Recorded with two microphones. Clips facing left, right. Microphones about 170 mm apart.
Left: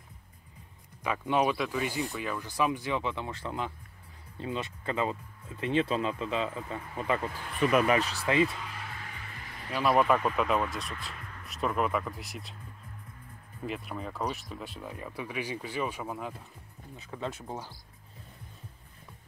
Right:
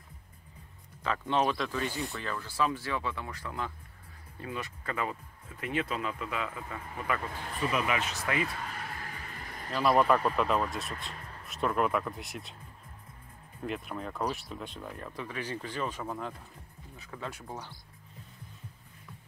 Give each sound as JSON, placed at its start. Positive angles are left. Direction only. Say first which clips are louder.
{"t": 1.0, "sound": "speech", "louder": "left 1 dB", "side_deg": 10}
{"t": 7.8, "sound": "speech", "louder": "left 5 dB", "side_deg": 35}
{"t": 8.6, "sound": "music", "louder": "right 2 dB", "side_deg": -45}
{"t": 9.7, "sound": "speech", "louder": "even", "side_deg": 5}
{"t": 10.9, "sound": "speech", "louder": "even", "side_deg": -35}
{"t": 11.4, "sound": "speech", "louder": "right 1 dB", "side_deg": 0}
{"t": 13.6, "sound": "speech", "louder": "even", "side_deg": 0}
{"t": 17.0, "sound": "speech", "louder": "left 4 dB", "side_deg": 20}